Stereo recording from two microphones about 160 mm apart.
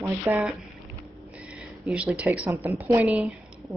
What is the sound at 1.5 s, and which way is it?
A woman's voice, 5° right (ahead or behind).